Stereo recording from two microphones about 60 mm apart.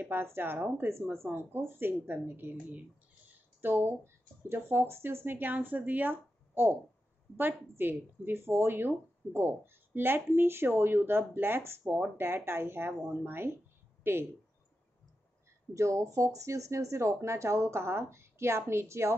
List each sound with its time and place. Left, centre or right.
0.0 s speech: right
15.7 s speech: right